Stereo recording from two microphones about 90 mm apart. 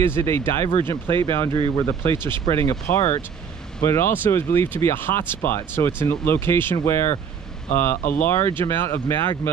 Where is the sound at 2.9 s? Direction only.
25° left (ahead or behind).